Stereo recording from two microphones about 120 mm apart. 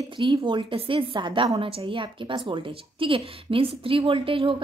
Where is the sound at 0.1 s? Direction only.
45° right (ahead or behind).